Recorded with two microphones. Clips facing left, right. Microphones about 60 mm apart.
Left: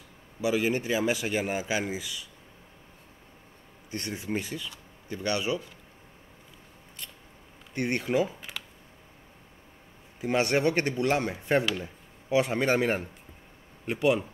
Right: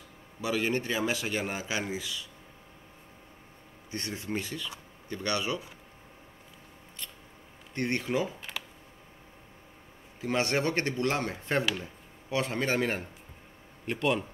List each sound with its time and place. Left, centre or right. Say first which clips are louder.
0.4 s a man's voice: left 3 dB; centre
4.0 s a man's voice: left 2 dB; centre
7.7 s a man's voice: left 3 dB; centre
8.3 s computer keyboard: right 1 dB; centre
10.2 s a man's voice: left 3 dB; centre